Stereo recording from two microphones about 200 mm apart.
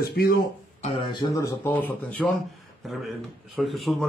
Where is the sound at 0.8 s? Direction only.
25° left (ahead or behind); by 2.3 s 10° left (ahead or behind).